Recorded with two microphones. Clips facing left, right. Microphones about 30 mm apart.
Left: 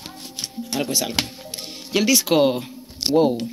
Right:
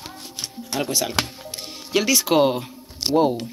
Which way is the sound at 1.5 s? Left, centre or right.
Left.